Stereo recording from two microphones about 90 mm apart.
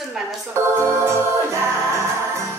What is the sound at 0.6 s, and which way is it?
Music, 30° right (ahead or behind).